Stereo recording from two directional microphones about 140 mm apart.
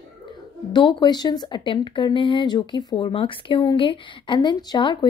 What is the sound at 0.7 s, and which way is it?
Speech, 35° left (ahead or behind).